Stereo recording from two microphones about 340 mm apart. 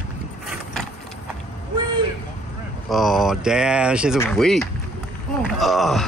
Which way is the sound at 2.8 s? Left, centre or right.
Centre.